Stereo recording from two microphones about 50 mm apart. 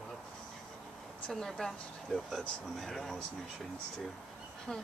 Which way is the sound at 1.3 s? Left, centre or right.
Centre.